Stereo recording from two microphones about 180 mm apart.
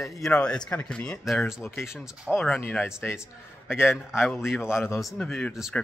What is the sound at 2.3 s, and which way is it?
Speech, 10° left (ahead or behind).